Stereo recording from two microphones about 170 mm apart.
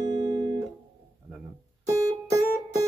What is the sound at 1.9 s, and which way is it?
Music, 20° right (ahead or behind).